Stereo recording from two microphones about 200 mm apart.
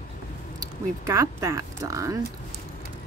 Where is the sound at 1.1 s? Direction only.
15° right (ahead or behind).